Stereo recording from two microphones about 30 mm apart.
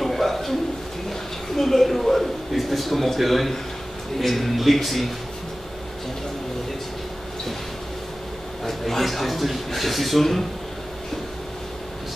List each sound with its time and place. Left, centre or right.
0.0 s a sound: centre
1.5 s a man's voice: centre
8.6 s a man's voice: centre